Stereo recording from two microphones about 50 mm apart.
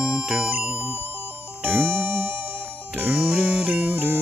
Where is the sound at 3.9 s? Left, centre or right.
Right.